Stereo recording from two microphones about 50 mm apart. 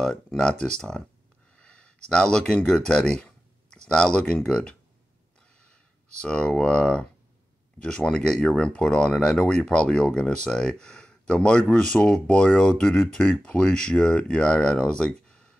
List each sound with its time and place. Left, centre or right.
0.4 s speech: centre